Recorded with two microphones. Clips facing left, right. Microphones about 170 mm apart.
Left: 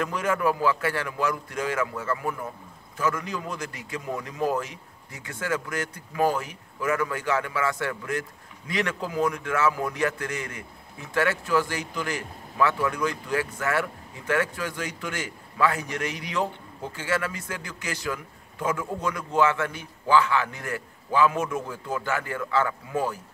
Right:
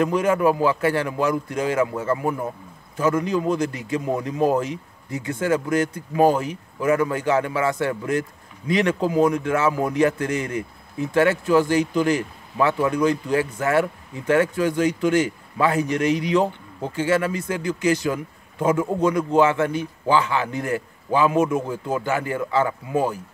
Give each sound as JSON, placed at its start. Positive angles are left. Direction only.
{"t": 0.0, "sound": "a man's voice", "side_deg": -20}